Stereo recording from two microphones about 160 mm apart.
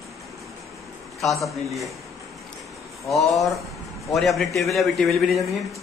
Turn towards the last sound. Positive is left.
turn(degrees=0)  # may be behind; listen again after turning